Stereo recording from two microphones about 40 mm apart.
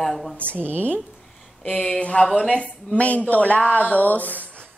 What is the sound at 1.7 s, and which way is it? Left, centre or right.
Speech, centre.